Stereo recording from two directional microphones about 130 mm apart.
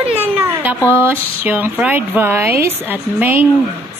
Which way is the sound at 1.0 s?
15° right (ahead or behind).